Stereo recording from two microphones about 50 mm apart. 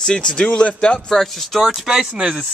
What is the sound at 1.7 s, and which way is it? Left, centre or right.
Speech, centre.